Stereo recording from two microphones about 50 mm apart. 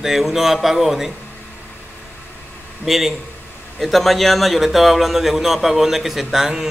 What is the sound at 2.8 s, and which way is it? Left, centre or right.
Speech, centre.